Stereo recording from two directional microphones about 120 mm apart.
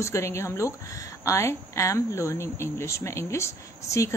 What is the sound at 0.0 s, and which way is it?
A woman's voice, 25° left (ahead or behind).